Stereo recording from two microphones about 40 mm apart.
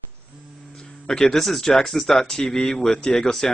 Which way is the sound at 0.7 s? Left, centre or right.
Centre.